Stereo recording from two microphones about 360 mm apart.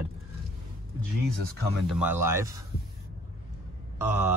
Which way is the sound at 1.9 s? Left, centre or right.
Centre.